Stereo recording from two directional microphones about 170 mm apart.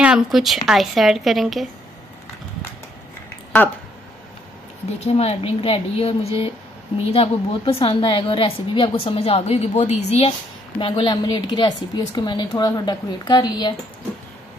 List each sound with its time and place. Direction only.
0.0 s speech: 5° right (ahead or behind)
5.0 s a woman's voice: 40° left (ahead or behind)
10.8 s a woman's voice: 30° left (ahead or behind)